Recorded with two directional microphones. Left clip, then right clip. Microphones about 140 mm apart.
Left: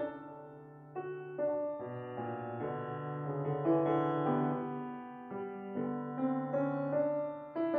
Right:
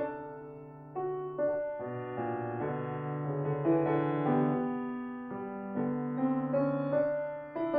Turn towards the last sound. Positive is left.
turn(degrees=-30)  # may be behind; listen again after turning